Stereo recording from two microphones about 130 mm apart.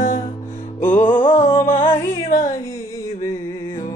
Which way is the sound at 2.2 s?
85° left.